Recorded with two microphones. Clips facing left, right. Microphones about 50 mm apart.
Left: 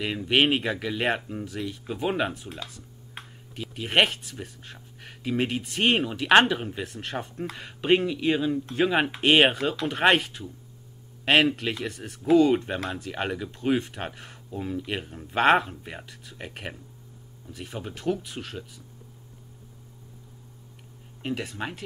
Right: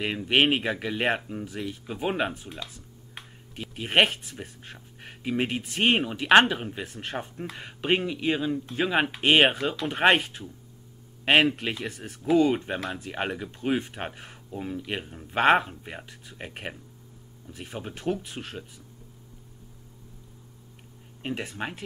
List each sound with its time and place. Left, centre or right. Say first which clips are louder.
0.0 s speech: even; centre
3.7 s speech: even; centre
21.2 s speech: left 1 dB; centre